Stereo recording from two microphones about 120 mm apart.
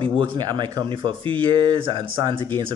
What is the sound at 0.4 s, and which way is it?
Speech, 35° right (ahead or behind).